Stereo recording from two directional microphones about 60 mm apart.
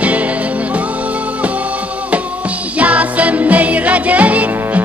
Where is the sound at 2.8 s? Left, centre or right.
Right.